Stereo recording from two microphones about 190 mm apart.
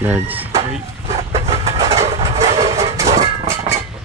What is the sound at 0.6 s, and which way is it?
Vehicle, 30° right (ahead or behind).